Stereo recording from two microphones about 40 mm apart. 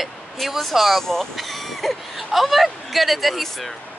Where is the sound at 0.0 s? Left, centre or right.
Centre.